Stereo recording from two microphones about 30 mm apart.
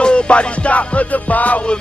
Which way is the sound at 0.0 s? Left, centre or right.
Left.